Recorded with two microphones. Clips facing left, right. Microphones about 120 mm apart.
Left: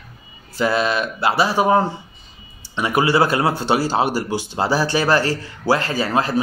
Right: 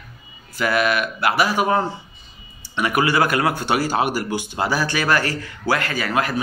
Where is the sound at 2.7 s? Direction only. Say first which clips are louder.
Left 2 dB; 25° left (ahead or behind).